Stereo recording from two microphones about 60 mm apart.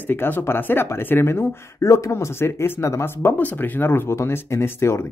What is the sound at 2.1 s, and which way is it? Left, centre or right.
Speech, left.